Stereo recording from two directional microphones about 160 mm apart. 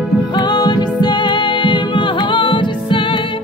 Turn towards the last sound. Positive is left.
turn(degrees=30)  # may be behind; listen again after turning